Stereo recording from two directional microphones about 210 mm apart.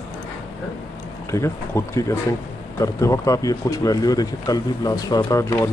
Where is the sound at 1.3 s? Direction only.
15° left (ahead or behind).